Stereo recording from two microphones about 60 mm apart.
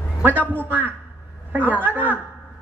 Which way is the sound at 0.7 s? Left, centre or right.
Right.